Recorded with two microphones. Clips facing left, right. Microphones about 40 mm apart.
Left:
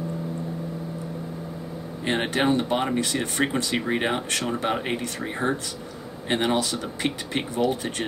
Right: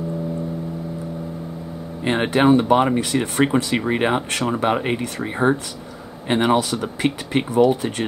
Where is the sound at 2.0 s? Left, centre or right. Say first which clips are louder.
Right 6 dB; right.